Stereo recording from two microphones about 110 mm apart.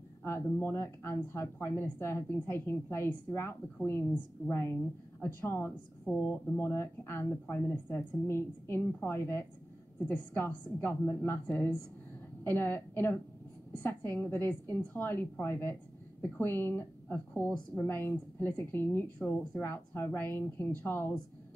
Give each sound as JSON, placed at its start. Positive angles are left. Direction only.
{"t": 0.2, "sound": "speech", "side_deg": 25}